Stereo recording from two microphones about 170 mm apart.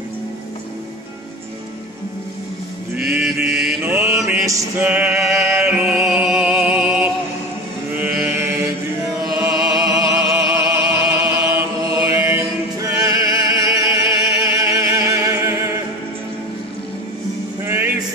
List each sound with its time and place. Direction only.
2.9 s mantra: 5° right (ahead or behind)
4.5 s music: 15° right (ahead or behind)
7.9 s mantra: 10° right (ahead or behind)
9.4 s music: 20° right (ahead or behind)
10.5 s chant: 15° right (ahead or behind)
14.3 s a sound: 20° right (ahead or behind)
17.6 s music: 15° right (ahead or behind)